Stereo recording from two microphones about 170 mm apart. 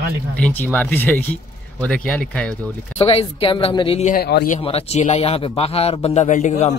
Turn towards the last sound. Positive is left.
turn(degrees=45)  # may be behind; listen again after turning